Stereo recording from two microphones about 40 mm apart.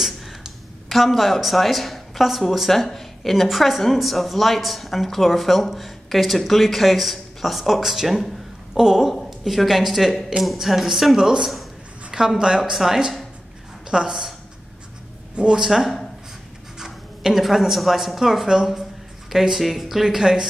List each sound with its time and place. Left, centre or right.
0.8 s a woman's voice: centre
12.4 s a woman's voice: right
15.3 s speech: centre